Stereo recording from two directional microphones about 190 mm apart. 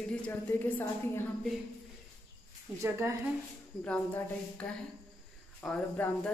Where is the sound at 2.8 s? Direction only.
15° right (ahead or behind).